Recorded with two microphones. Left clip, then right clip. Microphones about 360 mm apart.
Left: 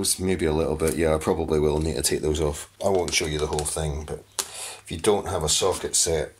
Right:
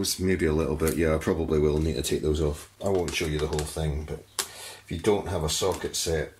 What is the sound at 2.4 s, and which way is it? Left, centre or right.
Speech, left.